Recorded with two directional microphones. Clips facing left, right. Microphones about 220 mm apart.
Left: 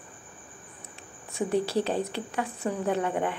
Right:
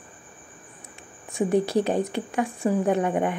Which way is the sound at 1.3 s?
15° right (ahead or behind).